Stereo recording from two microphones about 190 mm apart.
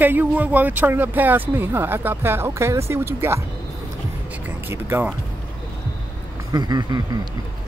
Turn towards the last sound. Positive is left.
turn(degrees=-20)  # may be behind; listen again after turning